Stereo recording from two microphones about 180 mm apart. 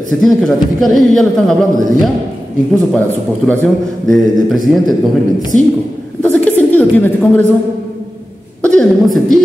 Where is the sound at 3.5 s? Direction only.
5° left (ahead or behind).